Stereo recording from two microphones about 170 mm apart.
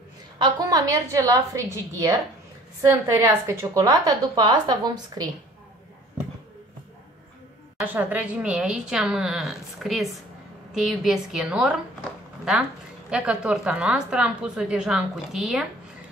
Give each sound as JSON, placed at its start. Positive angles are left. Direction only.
{"t": 0.7, "sound": "a woman's voice", "side_deg": -20}
{"t": 7.8, "sound": "a woman's voice", "side_deg": -10}
{"t": 13.1, "sound": "a woman's voice", "side_deg": -5}